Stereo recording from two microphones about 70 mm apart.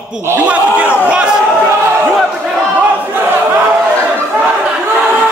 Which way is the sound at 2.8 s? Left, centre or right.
Right.